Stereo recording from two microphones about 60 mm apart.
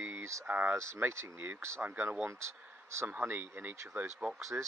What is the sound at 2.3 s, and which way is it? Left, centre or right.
Speech, right.